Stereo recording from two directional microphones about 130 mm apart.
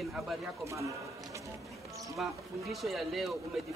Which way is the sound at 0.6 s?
25° right (ahead or behind).